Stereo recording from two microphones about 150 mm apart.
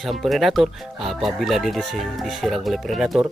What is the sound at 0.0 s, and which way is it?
Speech, centre (ahead or behind).